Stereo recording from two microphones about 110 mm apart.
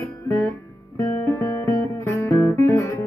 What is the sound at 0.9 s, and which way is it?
Music, 30° left (ahead or behind).